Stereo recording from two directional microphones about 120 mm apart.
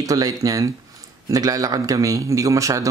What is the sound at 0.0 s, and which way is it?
Speech, 30° right (ahead or behind).